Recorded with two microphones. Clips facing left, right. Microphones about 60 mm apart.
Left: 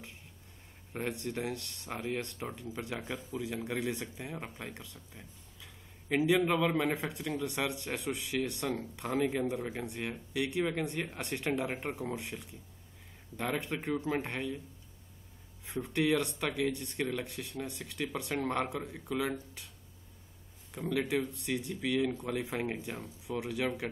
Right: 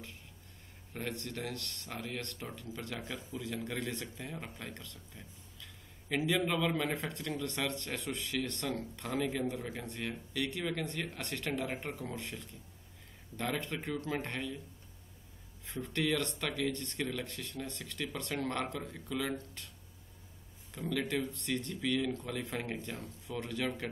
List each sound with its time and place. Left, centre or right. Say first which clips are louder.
0.9 s speech: left 4 dB; centre
15.6 s speech: left 3 dB; centre
20.7 s speech: left 3 dB; centre